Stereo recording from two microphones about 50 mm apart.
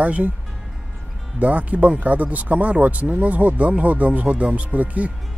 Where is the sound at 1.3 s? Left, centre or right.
Right.